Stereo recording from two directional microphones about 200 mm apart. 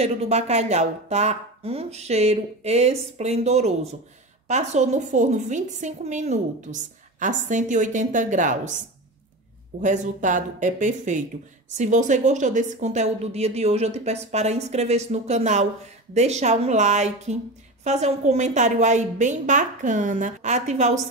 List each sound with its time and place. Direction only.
0.0 s a woman's voice: 30° right (ahead or behind)
9.8 s a woman's voice: 40° right (ahead or behind)